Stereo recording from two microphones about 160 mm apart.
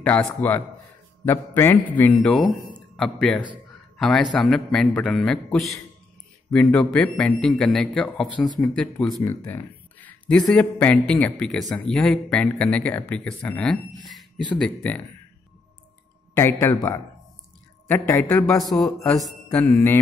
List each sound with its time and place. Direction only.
0.0 s a man's voice: 10° left (ahead or behind)
9.2 s a sound: 15° left (ahead or behind)
10.5 s speech: 10° left (ahead or behind)
16.3 s speech: 15° left (ahead or behind)
18.6 s a man's voice: centre (ahead or behind)